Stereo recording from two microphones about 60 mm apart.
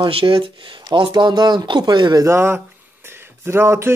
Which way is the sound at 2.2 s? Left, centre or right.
Right.